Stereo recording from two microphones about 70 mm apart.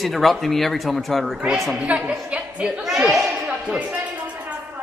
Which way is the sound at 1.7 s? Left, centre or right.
Centre.